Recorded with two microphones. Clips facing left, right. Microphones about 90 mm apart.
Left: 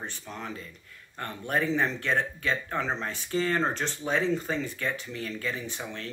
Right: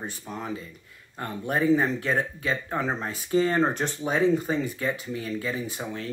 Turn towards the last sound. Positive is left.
turn(degrees=-10)  # may be behind; listen again after turning